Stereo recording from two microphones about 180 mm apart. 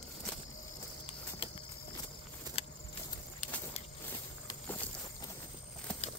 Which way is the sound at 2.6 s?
30° left (ahead or behind).